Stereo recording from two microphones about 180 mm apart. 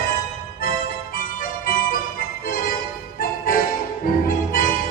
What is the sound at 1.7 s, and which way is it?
Music, 55° left (ahead or behind).